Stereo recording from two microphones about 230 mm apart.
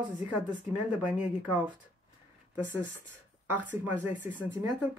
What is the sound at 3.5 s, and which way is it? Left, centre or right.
Speech, centre.